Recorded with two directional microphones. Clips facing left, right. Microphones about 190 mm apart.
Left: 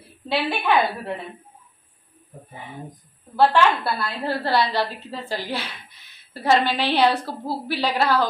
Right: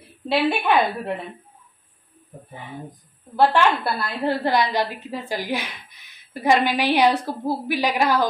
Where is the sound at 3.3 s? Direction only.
20° right (ahead or behind).